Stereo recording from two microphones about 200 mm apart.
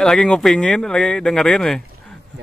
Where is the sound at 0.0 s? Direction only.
5° left (ahead or behind).